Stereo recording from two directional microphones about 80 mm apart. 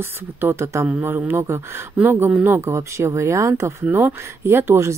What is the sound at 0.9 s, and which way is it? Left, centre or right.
Speech, right.